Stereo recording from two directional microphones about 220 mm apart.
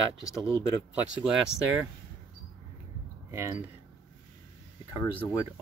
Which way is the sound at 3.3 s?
10° right (ahead or behind).